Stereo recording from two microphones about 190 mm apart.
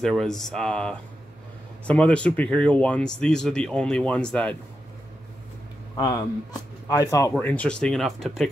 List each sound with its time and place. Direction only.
0.0 s speech: centre (ahead or behind)
5.9 s speech: 20° left (ahead or behind)
7.3 s speech: 5° left (ahead or behind)